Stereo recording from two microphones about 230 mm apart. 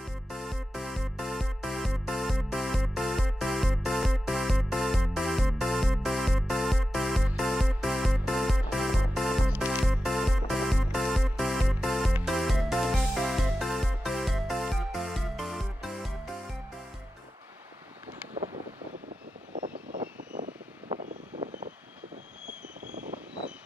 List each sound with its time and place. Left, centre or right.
0.0 s music: centre
19.5 s vehicle: right
22.8 s vehicle: right